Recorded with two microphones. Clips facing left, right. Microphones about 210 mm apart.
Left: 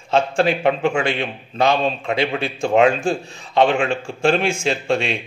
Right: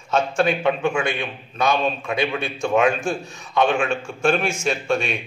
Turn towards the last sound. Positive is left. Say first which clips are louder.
# left 2 dB
turn(degrees=30)  # may be behind; listen again after turning